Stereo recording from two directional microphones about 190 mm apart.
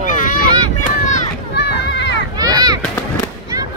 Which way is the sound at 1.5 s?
65° left (ahead or behind).